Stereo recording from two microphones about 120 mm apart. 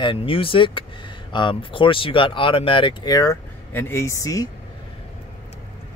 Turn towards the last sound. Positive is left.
turn(degrees=30)  # may be behind; listen again after turning